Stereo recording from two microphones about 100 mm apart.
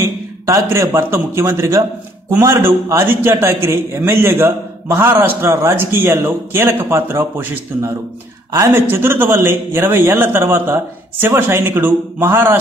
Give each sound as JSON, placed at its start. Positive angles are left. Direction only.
{"t": 0.0, "sound": "a man's voice", "side_deg": -30}